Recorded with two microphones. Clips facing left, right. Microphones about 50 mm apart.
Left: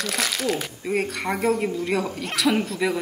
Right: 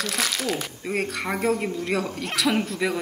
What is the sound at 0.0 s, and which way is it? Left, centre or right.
A woman's voice, centre.